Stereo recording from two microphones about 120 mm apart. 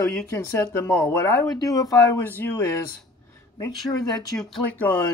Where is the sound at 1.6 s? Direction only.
30° left (ahead or behind).